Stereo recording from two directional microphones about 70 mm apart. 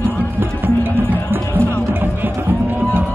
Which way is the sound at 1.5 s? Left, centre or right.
Left.